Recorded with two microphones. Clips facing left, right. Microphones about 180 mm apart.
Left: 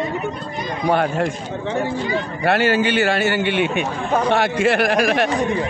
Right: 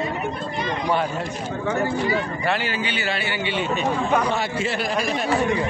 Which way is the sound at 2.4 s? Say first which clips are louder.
Left 7 dB; 70° left (ahead or behind).